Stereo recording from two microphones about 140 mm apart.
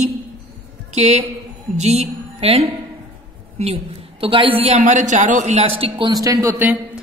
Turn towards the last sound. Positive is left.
turn(degrees=-15)  # may be behind; listen again after turning